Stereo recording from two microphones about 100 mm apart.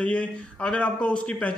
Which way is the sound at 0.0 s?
10° left (ahead or behind).